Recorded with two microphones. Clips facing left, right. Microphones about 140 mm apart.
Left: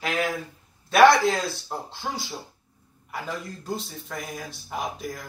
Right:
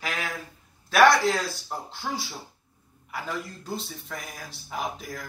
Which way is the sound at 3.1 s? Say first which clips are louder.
Even; centre (ahead or behind).